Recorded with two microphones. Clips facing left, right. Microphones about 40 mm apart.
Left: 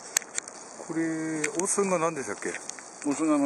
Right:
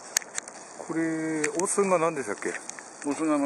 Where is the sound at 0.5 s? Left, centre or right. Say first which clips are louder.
Right 2 dB; right.